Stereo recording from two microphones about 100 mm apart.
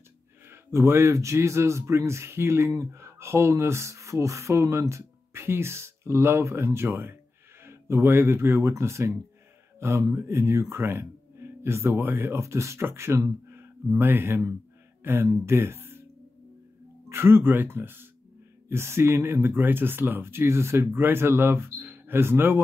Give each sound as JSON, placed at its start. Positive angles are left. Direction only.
{"t": 0.5, "sound": "speech", "side_deg": -25}
{"t": 17.1, "sound": "speech", "side_deg": -25}